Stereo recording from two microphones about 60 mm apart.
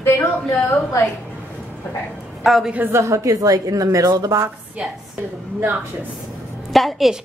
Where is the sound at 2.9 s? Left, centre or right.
Right.